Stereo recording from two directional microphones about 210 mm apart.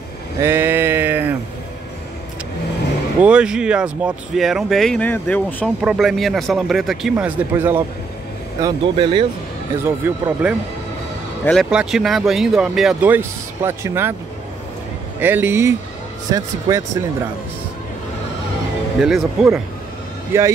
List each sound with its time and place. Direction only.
0.4 s a sound: 10° right (ahead or behind)
3.2 s speech: 5° right (ahead or behind)
5.8 s speech: centre (ahead or behind)
8.5 s speech: 20° right (ahead or behind)
9.8 s speech: 10° right (ahead or behind)
11.7 s speech: 5° right (ahead or behind)
15.1 s speech: 10° right (ahead or behind)
18.9 s speech: centre (ahead or behind)